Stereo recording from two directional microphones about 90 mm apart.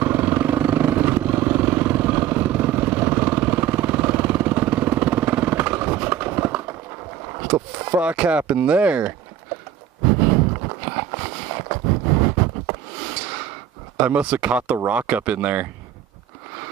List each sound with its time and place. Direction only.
0.0 s vehicle: 20° right (ahead or behind)
7.3 s boat: 25° right (ahead or behind)
8.0 s speech: 15° right (ahead or behind)
10.0 s a sound: 25° right (ahead or behind)
13.9 s speech: 15° right (ahead or behind)